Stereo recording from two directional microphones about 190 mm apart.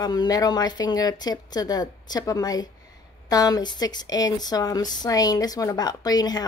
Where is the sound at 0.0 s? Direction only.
20° left (ahead or behind).